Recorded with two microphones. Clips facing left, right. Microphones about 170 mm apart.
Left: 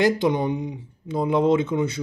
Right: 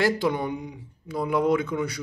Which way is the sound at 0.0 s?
20° left (ahead or behind).